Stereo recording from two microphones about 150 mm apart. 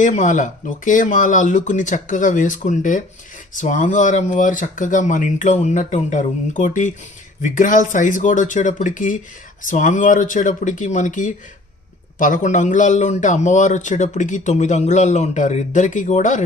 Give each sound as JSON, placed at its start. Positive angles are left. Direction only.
{"t": 0.0, "sound": "a man's voice", "side_deg": 55}